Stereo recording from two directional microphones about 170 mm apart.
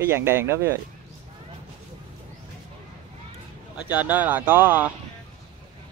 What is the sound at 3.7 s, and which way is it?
Speech, 10° right (ahead or behind).